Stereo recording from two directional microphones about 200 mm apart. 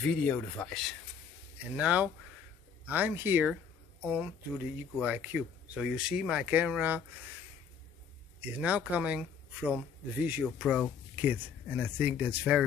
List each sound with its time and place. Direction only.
0.0 s speech: 5° left (ahead or behind)
8.4 s speech: 5° right (ahead or behind)